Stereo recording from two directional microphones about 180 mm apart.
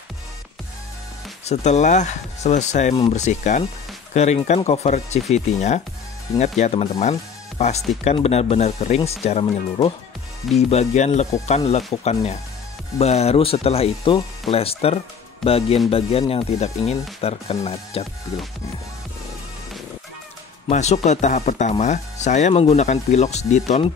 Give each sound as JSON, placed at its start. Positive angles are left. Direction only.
{"t": 1.4, "sound": "speech", "side_deg": 40}
{"t": 18.3, "sound": "music", "side_deg": 25}
{"t": 20.6, "sound": "speech", "side_deg": 40}